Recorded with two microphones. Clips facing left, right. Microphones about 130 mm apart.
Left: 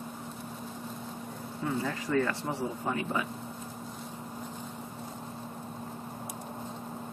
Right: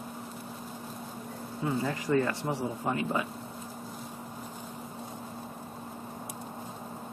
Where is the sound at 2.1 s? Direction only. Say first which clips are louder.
Right 1 dB; 20° right (ahead or behind).